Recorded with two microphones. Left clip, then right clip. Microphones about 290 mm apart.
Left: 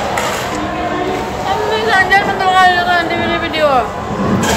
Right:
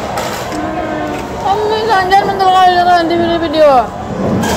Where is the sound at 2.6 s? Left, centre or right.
Right.